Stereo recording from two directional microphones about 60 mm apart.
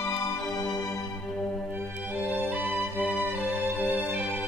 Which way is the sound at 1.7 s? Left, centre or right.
Right.